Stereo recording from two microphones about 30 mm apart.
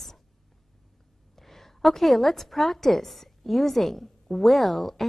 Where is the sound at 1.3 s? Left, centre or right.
Centre.